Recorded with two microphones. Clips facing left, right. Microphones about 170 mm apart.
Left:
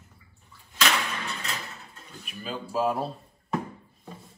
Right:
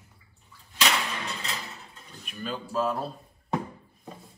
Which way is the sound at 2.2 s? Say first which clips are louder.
Right 1 dB; 5° left (ahead or behind).